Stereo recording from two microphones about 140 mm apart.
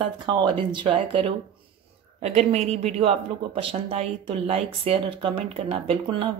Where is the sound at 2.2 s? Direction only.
50° right (ahead or behind).